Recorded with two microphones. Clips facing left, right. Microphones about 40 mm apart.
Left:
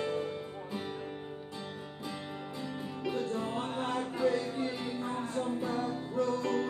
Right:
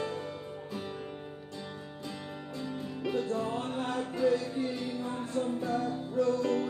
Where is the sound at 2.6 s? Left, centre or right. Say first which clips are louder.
Right 2 dB; centre.